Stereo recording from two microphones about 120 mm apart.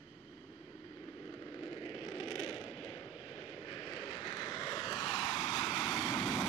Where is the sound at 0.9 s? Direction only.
30° left (ahead or behind).